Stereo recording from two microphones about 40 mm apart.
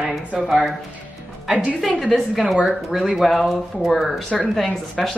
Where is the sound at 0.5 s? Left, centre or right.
Centre.